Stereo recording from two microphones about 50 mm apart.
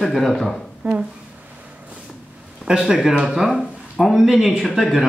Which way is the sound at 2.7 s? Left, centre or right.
Centre.